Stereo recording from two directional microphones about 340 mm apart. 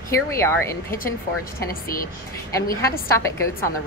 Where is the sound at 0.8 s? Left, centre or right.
Left.